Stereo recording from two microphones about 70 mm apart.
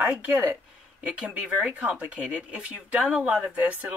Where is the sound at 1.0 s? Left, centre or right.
Centre.